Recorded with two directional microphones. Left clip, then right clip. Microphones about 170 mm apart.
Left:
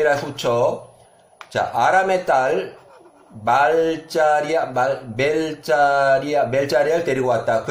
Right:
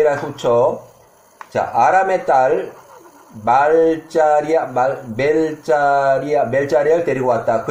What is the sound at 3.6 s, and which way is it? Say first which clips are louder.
Speech: right 4 dB; centre (ahead or behind).